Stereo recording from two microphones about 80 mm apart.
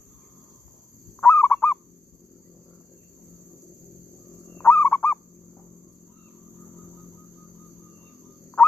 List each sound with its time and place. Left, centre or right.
1.2 s goose: left
4.6 s fowl: left